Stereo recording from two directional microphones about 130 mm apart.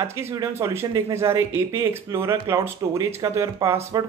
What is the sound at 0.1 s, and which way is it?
Speech, 20° right (ahead or behind).